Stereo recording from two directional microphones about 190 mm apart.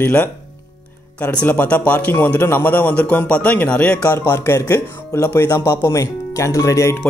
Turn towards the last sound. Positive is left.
turn(degrees=15)  # may be behind; listen again after turning